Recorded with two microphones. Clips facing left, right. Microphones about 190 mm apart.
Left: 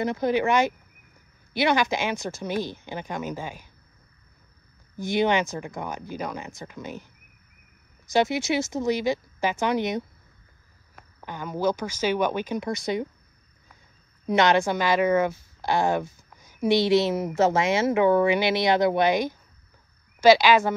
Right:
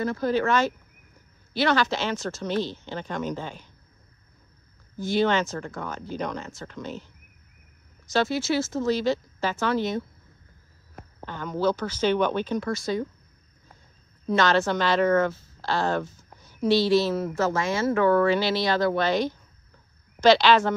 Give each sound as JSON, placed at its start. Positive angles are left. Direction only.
{"t": 0.0, "sound": "speech", "side_deg": 20}
{"t": 4.9, "sound": "speech", "side_deg": 15}
{"t": 8.1, "sound": "speech", "side_deg": 15}
{"t": 11.2, "sound": "speech", "side_deg": 10}
{"t": 14.2, "sound": "speech", "side_deg": 15}